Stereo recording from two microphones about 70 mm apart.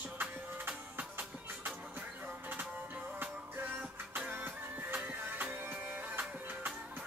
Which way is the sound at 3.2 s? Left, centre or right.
Right.